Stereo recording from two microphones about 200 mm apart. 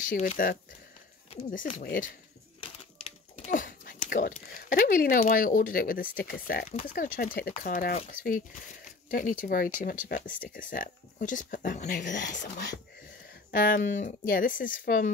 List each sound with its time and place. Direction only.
0.0 s speech: 45° left (ahead or behind)
1.8 s speech: 45° left (ahead or behind)
2.6 s crumpling: 35° left (ahead or behind)
6.4 s speech: 45° left (ahead or behind)
12.2 s speech: 60° left (ahead or behind)
13.5 s speech: 45° left (ahead or behind)